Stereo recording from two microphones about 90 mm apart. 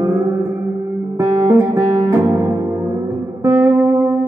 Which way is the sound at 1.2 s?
40° right (ahead or behind).